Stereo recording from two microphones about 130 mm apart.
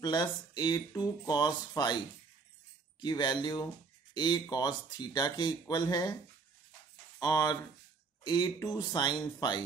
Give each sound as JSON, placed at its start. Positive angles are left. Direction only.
{"t": 0.0, "sound": "speech", "side_deg": 35}
{"t": 3.0, "sound": "speech", "side_deg": 35}
{"t": 7.2, "sound": "speech", "side_deg": 30}